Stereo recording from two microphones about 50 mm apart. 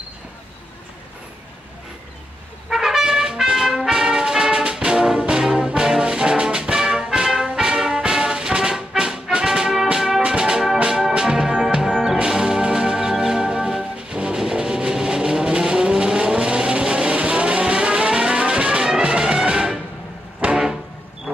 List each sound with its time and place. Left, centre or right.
2.7 s trumpet: centre
5.8 s music: centre
15.7 s vehicle: centre